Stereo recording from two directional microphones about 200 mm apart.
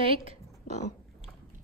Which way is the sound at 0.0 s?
30° right (ahead or behind).